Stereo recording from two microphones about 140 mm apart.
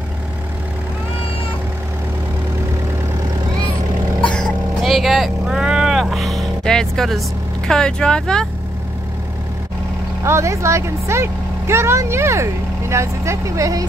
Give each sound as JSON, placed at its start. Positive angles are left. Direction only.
{"t": 4.2, "sound": "vehicle", "side_deg": 5}
{"t": 10.2, "sound": "speech", "side_deg": -20}